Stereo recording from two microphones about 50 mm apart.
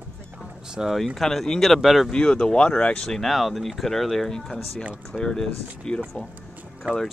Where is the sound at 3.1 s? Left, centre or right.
Centre.